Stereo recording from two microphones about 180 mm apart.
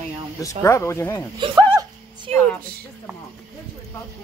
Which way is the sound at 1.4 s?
25° right (ahead or behind).